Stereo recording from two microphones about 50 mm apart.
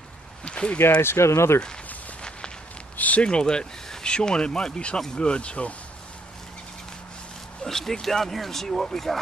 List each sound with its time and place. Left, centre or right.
0.5 s a sound: centre
1.0 s speech: left
3.2 s speech: centre
7.6 s speech: centre